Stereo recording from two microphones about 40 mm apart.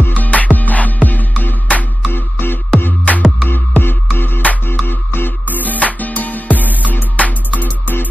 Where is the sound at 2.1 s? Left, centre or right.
Left.